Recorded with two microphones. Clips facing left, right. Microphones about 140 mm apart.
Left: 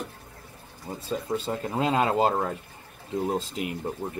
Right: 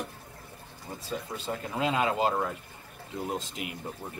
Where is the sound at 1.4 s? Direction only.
35° left (ahead or behind).